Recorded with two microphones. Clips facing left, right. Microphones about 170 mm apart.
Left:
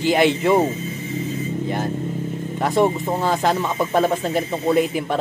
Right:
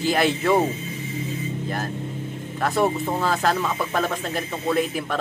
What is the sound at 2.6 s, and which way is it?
Speech, 20° left (ahead or behind).